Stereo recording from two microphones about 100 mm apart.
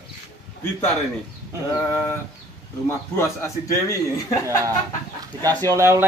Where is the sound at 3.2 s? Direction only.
30° left (ahead or behind).